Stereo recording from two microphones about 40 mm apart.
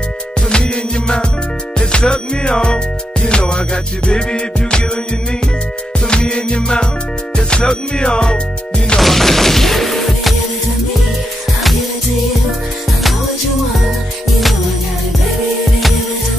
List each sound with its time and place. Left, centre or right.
0.5 s music: left
5.9 s music: left
9.0 s music: centre